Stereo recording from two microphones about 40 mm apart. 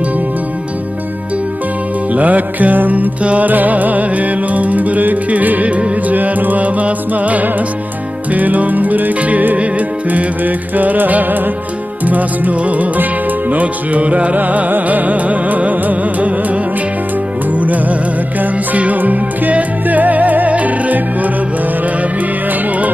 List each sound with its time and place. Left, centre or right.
2.1 s music: right
3.2 s music: right
3.4 s music: right